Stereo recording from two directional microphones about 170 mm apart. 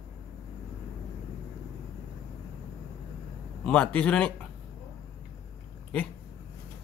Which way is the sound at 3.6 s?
5° left (ahead or behind).